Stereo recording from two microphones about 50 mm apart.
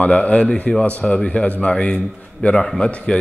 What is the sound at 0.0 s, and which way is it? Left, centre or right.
A man's voice, left.